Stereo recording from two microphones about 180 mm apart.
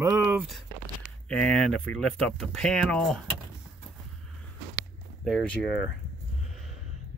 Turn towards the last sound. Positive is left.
turn(degrees=0)  # may be behind; listen again after turning